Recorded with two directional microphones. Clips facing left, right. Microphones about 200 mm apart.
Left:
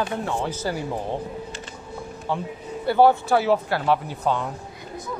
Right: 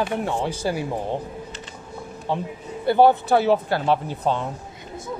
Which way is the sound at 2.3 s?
15° right (ahead or behind).